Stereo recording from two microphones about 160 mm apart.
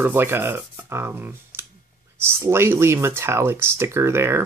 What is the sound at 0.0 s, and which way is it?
Speech, 15° right (ahead or behind).